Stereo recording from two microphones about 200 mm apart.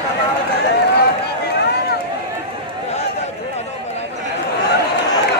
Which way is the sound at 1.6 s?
55° left (ahead or behind).